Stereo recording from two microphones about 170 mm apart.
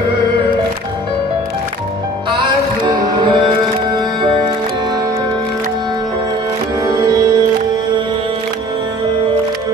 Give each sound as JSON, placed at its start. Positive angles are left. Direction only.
{"t": 2.3, "sound": "music", "side_deg": -25}
{"t": 6.8, "sound": "music", "side_deg": -20}